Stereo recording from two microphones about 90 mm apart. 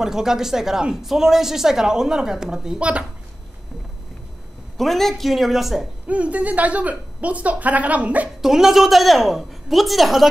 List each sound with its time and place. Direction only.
0.0 s speech: 5° right (ahead or behind)
4.7 s speech: 5° left (ahead or behind)
6.0 s a woman's voice: 15° right (ahead or behind)
8.4 s speech: 5° right (ahead or behind)